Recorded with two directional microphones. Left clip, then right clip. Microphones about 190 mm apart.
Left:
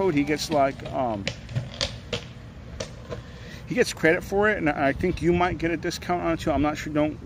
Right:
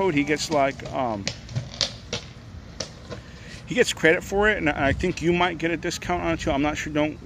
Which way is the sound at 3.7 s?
10° right (ahead or behind).